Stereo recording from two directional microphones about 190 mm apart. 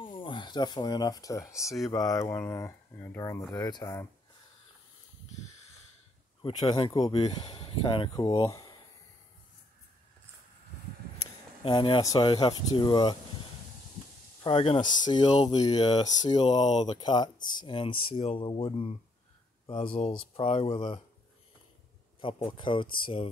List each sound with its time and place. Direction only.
0.0 s speech: 25° left (ahead or behind)
1.6 s speech: centre (ahead or behind)
1.9 s speech: 20° left (ahead or behind)
6.4 s speech: 25° left (ahead or behind)
11.6 s speech: 25° left (ahead or behind)
14.4 s speech: 30° left (ahead or behind)
20.1 s speech: 35° left (ahead or behind)
22.5 s speech: 25° left (ahead or behind)